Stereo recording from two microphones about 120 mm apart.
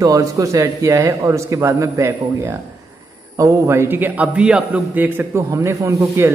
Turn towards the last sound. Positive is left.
turn(degrees=-20)  # may be behind; listen again after turning